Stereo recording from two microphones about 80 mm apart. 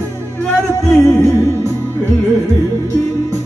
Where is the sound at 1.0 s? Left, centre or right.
Left.